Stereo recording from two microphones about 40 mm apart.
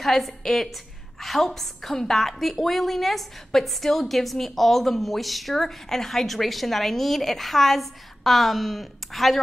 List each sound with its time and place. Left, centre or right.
0.0 s a woman's voice: centre